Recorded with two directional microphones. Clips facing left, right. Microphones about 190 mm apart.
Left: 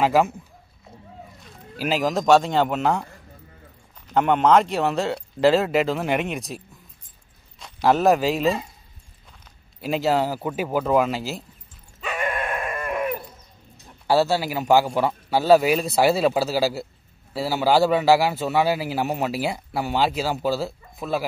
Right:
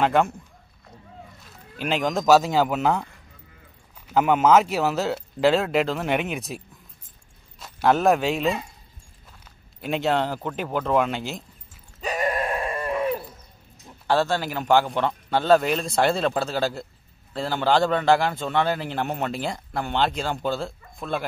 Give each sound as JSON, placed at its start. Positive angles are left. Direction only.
{"t": 0.0, "sound": "speech", "side_deg": 0}
{"t": 1.4, "sound": "speech", "side_deg": 5}
{"t": 4.1, "sound": "speech", "side_deg": -5}
{"t": 9.8, "sound": "speech", "side_deg": 0}
{"t": 12.0, "sound": "a sound", "side_deg": -40}
{"t": 14.0, "sound": "a man's voice", "side_deg": 10}